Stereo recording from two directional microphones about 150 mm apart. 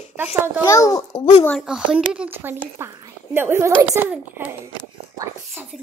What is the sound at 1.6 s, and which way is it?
Child singing, 5° right (ahead or behind).